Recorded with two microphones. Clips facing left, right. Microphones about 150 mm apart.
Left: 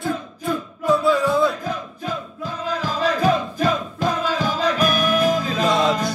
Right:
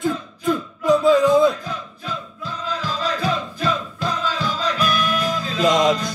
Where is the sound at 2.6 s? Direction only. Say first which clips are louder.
Left 3 dB; 50° left (ahead or behind).